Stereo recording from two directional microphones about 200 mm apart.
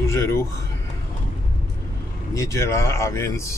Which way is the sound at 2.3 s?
15° left (ahead or behind).